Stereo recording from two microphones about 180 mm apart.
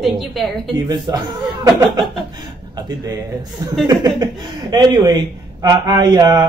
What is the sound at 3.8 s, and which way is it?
A man's voice, 20° right (ahead or behind).